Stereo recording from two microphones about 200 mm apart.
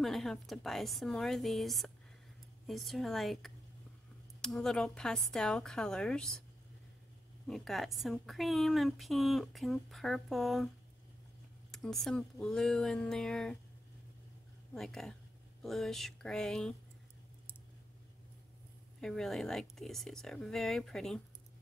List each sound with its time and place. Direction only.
0.0 s a woman's voice: centre (ahead or behind)
7.4 s a woman's voice: centre (ahead or behind)
11.7 s a woman's voice: centre (ahead or behind)
14.7 s a woman's voice: 5° left (ahead or behind)
18.9 s a woman's voice: centre (ahead or behind)